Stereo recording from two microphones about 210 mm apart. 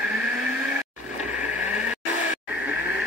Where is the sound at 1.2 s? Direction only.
5° right (ahead or behind).